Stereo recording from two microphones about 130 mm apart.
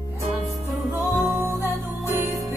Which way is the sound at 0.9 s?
20° right (ahead or behind).